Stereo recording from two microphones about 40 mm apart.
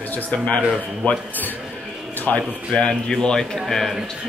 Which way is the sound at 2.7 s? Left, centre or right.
Left.